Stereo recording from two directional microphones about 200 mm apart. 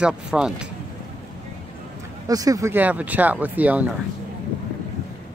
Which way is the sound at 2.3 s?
15° right (ahead or behind).